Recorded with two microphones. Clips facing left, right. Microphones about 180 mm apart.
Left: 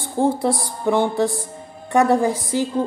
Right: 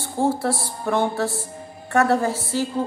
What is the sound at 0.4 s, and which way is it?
A woman's voice, 15° left (ahead or behind).